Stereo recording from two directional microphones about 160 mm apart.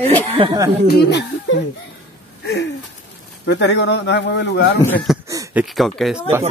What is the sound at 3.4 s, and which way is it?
Speech, 90° left.